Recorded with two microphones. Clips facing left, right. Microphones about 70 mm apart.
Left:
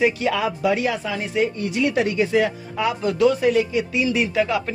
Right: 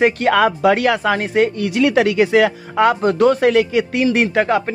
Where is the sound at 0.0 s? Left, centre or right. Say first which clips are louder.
Right 6 dB; right.